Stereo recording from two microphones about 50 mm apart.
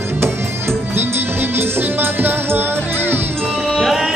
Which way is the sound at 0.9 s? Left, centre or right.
Right.